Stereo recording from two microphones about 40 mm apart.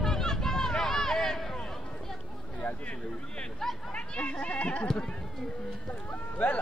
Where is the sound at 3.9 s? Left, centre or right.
Left.